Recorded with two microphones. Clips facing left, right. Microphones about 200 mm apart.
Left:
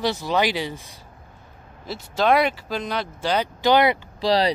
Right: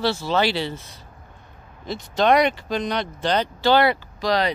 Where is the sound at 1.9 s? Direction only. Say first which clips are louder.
Right 1 dB; 5° left (ahead or behind).